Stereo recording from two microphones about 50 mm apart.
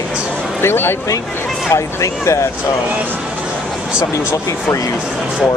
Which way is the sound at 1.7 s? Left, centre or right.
Left.